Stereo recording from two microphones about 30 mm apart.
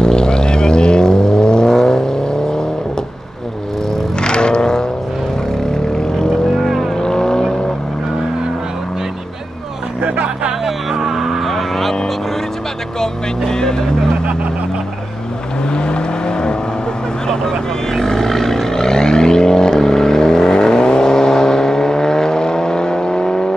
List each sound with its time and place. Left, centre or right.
0.0 s vehicle: left
4.2 s music: left
5.6 s vehicle: left
10.6 s vehicle: centre
11.4 s vehicle: centre
13.0 s vehicle: left
15.7 s vehicle: left
17.3 s vehicle: centre